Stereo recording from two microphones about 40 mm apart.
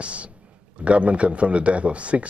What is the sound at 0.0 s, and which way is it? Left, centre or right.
A man's voice, right.